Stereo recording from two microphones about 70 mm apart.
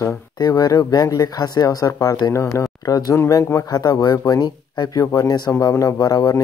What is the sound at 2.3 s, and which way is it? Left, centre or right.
Speech, left.